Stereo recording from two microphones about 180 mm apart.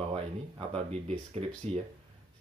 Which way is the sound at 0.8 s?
35° right (ahead or behind).